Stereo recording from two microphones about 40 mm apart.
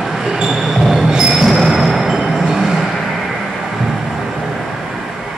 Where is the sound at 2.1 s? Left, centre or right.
Centre.